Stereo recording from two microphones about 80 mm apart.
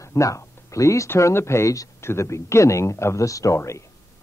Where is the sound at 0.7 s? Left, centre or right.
Left.